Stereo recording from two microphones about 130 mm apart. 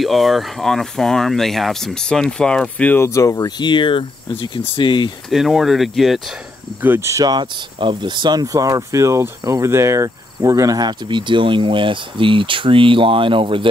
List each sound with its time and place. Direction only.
0.0 s speech: centre (ahead or behind); by 5.1 s 35° left (ahead or behind)
5.3 s speech: centre (ahead or behind)
6.8 s speech: 20° right (ahead or behind); by 13.7 s 40° right (ahead or behind)